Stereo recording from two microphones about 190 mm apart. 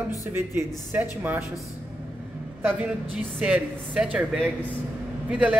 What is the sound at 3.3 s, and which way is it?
A woman's voice, 10° right (ahead or behind).